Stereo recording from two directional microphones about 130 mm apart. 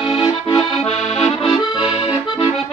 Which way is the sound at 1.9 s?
45° left (ahead or behind).